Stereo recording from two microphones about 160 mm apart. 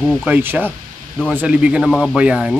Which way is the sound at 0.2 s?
10° right (ahead or behind).